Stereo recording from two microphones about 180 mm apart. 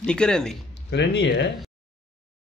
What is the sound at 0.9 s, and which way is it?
Speech, 70° left (ahead or behind).